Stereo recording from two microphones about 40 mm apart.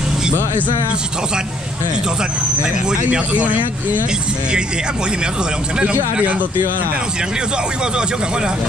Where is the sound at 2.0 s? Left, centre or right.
Centre.